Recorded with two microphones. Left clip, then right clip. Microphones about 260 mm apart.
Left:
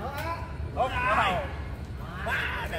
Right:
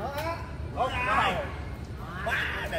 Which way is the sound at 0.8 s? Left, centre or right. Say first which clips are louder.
Left 1 dB; centre.